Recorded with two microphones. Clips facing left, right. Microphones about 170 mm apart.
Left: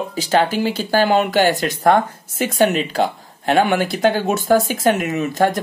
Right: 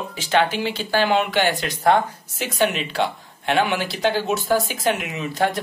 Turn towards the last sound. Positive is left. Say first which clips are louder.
# left 5 dB
turn(degrees=45)  # may be behind; listen again after turning